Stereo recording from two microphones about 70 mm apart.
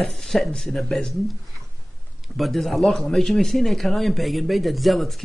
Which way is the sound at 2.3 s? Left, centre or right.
Centre.